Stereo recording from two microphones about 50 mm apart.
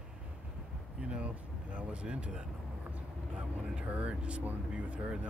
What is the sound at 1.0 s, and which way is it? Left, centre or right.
Speech, right.